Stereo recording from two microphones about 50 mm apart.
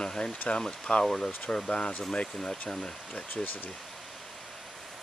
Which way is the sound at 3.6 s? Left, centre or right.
Centre.